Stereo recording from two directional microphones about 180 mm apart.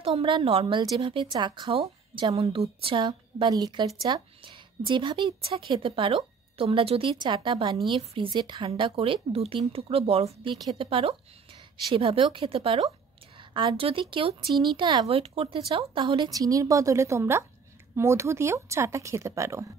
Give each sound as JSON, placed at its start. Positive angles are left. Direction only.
{"t": 0.0, "sound": "a woman's voice", "side_deg": -30}